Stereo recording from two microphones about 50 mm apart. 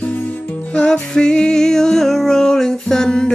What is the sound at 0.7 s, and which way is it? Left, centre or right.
Music, centre.